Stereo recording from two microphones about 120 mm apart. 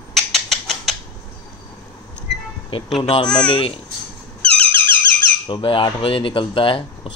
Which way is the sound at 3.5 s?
50° left (ahead or behind).